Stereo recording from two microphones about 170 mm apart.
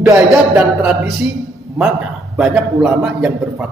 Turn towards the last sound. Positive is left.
turn(degrees=-5)  # may be behind; listen again after turning